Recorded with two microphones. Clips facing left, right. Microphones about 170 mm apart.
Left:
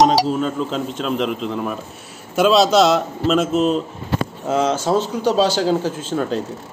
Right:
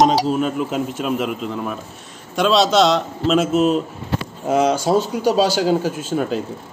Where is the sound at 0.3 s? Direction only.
15° right (ahead or behind).